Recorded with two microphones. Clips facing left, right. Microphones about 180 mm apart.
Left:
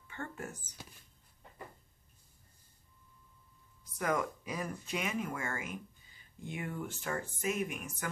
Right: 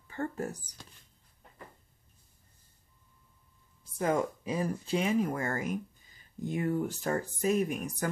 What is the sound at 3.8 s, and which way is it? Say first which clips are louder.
Speech: right 4 dB; 30° right (ahead or behind).